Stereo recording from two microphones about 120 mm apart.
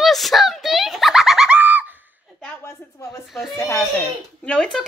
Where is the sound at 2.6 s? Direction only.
25° left (ahead or behind).